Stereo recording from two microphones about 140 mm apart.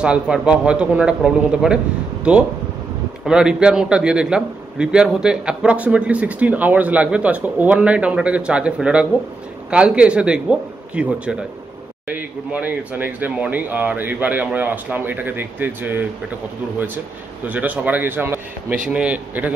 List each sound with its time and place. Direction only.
0.0 s a man's voice: 5° right (ahead or behind)